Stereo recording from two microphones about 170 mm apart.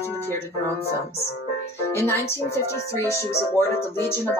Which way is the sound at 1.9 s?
15° left (ahead or behind).